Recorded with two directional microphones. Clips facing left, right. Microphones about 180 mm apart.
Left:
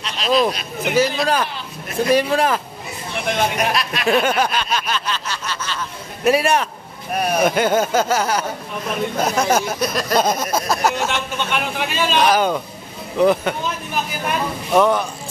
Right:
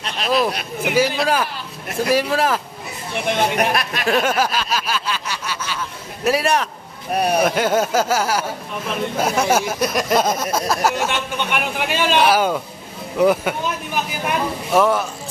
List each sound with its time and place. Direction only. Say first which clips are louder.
0.8 s speech: even; 10° right (ahead or behind)
3.5 s speech: right 1 dB; 55° right (ahead or behind)
4.0 s speech: left 2 dB; centre (ahead or behind)
6.2 s speech: left 2 dB; centre (ahead or behind)
7.2 s speech: right 2 dB; 30° right (ahead or behind)
7.4 s speech: left 1 dB; centre (ahead or behind)
10.1 s speech: left 2 dB; centre (ahead or behind)